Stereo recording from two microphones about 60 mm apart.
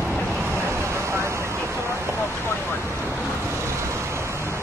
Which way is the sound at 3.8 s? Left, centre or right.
Right.